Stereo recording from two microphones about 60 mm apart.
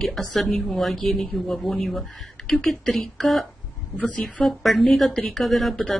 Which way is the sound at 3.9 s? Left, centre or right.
Left.